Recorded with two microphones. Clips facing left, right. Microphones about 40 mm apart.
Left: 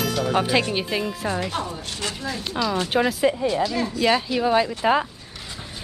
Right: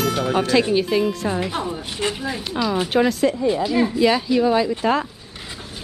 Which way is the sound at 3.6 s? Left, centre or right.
Centre.